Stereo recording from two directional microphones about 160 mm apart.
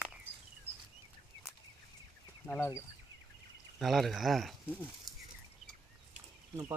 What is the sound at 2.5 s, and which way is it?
Speech, 15° left (ahead or behind).